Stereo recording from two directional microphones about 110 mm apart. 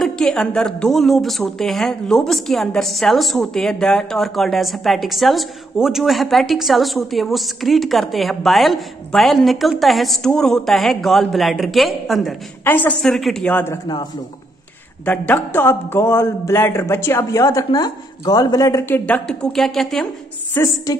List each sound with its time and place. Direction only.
0.0 s a woman's voice: 5° left (ahead or behind)
12.6 s a woman's voice: 15° left (ahead or behind)
13.0 s a woman's voice: 5° left (ahead or behind)
13.5 s a man's voice: 20° left (ahead or behind)
15.0 s a man's voice: 20° left (ahead or behind)